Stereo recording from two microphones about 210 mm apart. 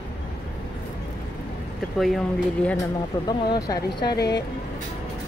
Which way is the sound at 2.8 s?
15° left (ahead or behind).